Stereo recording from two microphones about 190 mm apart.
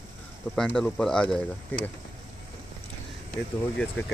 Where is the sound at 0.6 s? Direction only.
5° left (ahead or behind).